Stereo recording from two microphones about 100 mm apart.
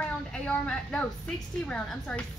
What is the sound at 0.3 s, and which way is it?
A woman's voice, 10° left (ahead or behind).